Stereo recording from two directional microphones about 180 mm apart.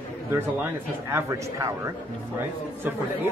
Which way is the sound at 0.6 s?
15° right (ahead or behind).